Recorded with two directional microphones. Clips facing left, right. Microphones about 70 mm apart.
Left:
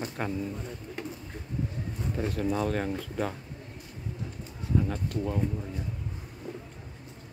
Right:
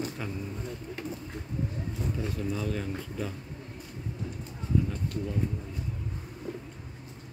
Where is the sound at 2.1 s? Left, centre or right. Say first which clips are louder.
Left 7 dB; left.